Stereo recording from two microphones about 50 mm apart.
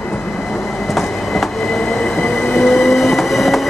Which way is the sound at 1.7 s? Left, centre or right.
Centre.